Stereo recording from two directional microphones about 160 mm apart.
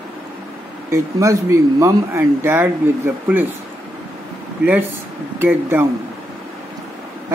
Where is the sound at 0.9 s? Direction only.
20° right (ahead or behind).